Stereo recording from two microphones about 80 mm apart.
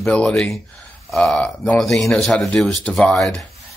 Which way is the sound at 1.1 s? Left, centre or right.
Centre.